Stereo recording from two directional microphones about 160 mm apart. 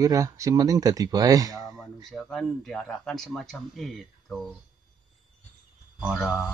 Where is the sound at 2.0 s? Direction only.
Centre (ahead or behind).